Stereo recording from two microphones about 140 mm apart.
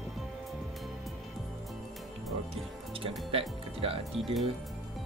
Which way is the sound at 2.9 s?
40° right (ahead or behind).